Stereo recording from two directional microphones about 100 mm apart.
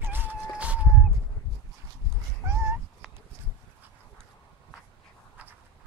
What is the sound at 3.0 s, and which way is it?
Insect, 5° right (ahead or behind).